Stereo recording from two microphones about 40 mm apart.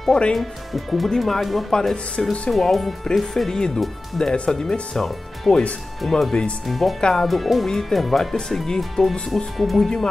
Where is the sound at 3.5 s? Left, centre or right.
Centre.